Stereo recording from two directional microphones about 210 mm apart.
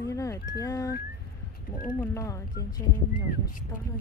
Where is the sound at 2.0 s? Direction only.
15° left (ahead or behind).